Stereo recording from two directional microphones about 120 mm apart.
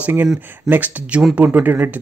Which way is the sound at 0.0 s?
15° right (ahead or behind).